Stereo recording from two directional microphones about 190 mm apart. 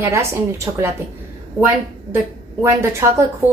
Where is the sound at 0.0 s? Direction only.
15° right (ahead or behind).